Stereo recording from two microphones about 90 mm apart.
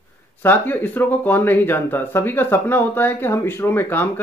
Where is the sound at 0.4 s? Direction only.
20° left (ahead or behind).